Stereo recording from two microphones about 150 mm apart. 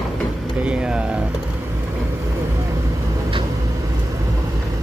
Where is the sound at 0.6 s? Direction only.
10° right (ahead or behind).